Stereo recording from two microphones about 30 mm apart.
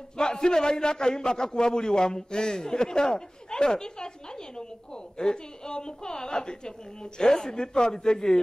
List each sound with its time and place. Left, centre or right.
0.2 s a man's voice: left
5.1 s a man's voice: left